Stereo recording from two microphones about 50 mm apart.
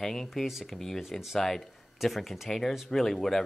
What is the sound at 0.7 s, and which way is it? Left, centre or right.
Speech, centre.